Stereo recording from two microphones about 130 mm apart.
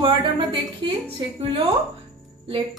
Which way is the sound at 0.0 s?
35° right (ahead or behind).